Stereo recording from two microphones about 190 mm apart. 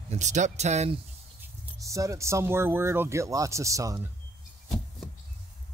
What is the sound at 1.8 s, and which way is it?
Speech, 15° right (ahead or behind).